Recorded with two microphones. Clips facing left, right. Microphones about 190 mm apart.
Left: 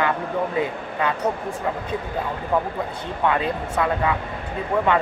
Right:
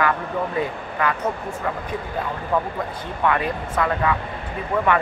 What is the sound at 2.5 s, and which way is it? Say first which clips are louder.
Speech: even; 15° left (ahead or behind).